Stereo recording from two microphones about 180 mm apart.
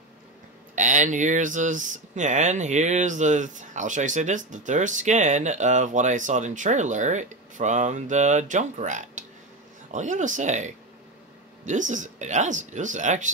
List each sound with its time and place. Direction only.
0.7 s speech: 45° right (ahead or behind)